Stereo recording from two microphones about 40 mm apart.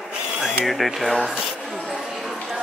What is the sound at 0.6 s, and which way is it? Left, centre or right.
Speech, centre.